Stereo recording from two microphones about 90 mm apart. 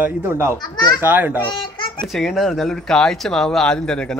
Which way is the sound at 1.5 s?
60° left (ahead or behind).